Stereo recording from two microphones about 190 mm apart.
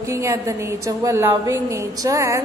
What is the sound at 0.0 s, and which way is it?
A woman's voice, 15° right (ahead or behind).